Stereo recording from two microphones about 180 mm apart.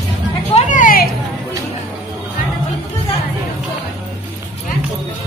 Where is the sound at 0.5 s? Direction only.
45° left (ahead or behind).